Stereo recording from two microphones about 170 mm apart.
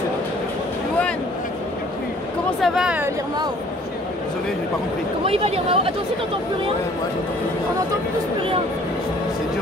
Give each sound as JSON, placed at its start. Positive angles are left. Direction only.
{"t": 2.6, "sound": "speech", "side_deg": -5}
{"t": 5.2, "sound": "speech", "side_deg": -35}